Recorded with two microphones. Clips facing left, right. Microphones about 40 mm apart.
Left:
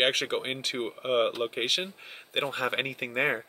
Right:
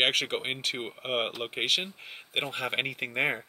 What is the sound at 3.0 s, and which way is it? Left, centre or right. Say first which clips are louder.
Speech: left 2 dB; centre.